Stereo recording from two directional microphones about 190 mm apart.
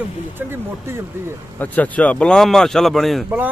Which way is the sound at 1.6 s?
10° left (ahead or behind).